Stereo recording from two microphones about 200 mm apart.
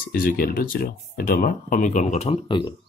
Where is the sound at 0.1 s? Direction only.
45° left (ahead or behind); by 2.7 s 25° left (ahead or behind).